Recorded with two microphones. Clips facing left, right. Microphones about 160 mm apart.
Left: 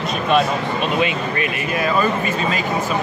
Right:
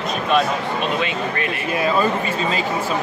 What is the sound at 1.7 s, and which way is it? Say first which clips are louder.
Speech: right 1 dB; 30° right (ahead or behind).